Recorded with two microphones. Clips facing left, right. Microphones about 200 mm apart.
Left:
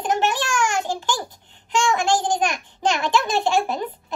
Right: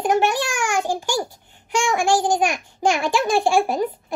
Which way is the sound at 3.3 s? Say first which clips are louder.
Right 3 dB; 45° right (ahead or behind).